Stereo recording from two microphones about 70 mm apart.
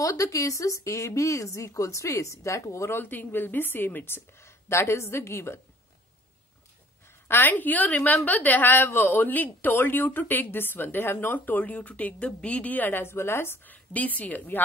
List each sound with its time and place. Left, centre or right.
0.0 s a woman's voice: left
3.0 s a woman's voice: left
7.2 s a woman's voice: left
13.9 s a woman's voice: left